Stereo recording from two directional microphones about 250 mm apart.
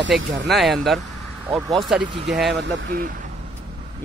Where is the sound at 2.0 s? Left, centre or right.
Centre.